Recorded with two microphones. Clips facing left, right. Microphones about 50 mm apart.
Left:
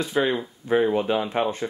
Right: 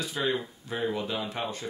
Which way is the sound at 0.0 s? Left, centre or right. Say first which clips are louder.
Left 6 dB; left.